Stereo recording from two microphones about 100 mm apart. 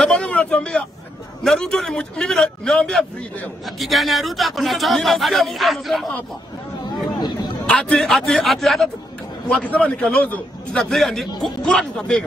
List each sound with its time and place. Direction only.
0.0 s vehicle: 10° left (ahead or behind)
1.4 s a man's voice: 5° left (ahead or behind)
7.2 s speech: 45° left (ahead or behind)
7.6 s speech: 10° left (ahead or behind)
9.5 s a man's voice: 15° left (ahead or behind)